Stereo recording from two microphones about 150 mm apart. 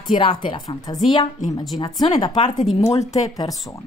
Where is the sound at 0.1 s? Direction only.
35° left (ahead or behind).